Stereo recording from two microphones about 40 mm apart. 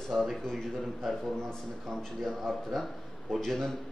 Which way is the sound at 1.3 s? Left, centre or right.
Centre.